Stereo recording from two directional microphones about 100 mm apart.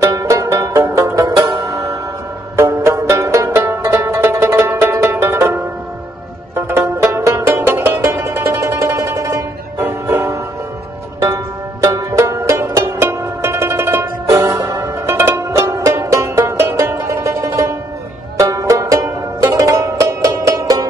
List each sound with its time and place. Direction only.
0.0 s music: 35° right (ahead or behind)